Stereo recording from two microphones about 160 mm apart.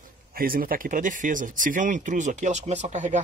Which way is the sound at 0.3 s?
65° right (ahead or behind).